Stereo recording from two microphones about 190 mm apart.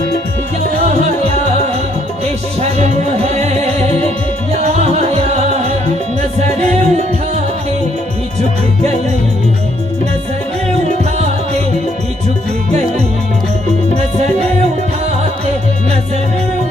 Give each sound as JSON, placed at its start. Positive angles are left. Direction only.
{"t": 0.8, "sound": "music", "side_deg": -35}
{"t": 2.6, "sound": "music", "side_deg": -35}